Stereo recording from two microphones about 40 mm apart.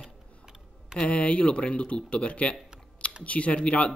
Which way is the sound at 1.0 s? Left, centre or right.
Left.